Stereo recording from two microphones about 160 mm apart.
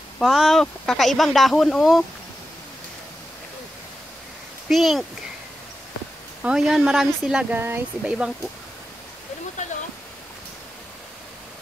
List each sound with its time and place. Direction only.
0.2 s speech: centre (ahead or behind)
4.6 s speech: centre (ahead or behind)
6.4 s speech: 5° right (ahead or behind)